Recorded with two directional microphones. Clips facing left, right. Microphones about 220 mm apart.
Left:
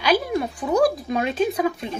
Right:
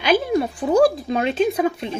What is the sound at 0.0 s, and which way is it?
Speech, 25° right (ahead or behind).